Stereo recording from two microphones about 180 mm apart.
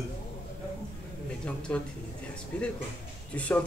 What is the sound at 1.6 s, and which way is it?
A man's voice, 5° left (ahead or behind).